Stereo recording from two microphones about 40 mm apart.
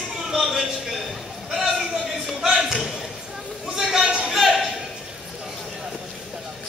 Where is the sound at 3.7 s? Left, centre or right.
Centre.